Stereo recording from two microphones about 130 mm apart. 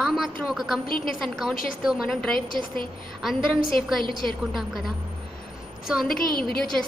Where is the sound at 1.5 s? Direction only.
90° left.